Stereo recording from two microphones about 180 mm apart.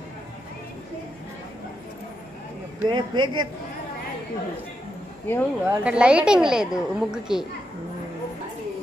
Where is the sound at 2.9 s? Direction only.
25° right (ahead or behind).